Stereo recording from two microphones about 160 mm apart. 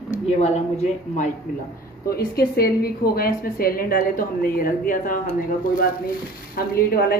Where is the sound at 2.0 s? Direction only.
75° left (ahead or behind); by 5.2 s 60° left (ahead or behind).